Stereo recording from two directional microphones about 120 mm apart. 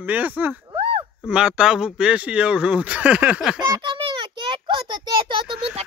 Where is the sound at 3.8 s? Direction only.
40° right (ahead or behind).